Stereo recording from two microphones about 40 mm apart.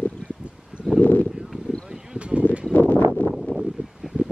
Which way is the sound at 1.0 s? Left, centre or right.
Left.